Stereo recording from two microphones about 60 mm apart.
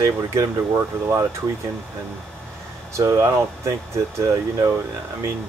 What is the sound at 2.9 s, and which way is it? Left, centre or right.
Speech, right.